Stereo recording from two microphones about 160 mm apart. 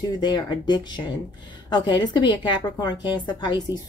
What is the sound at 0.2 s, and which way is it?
A woman's voice, 30° left (ahead or behind).